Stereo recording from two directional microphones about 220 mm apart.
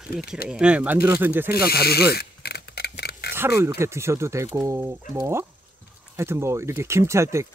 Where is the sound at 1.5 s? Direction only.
45° left (ahead or behind).